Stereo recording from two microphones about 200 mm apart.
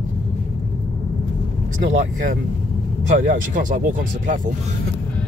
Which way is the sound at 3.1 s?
40° right (ahead or behind).